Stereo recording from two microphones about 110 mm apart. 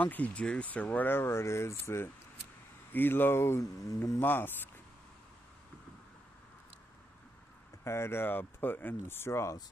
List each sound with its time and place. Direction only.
0.0 s speech: 15° left (ahead or behind)
7.8 s speech: 25° left (ahead or behind)